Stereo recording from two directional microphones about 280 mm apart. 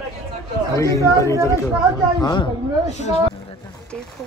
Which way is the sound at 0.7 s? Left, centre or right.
Centre.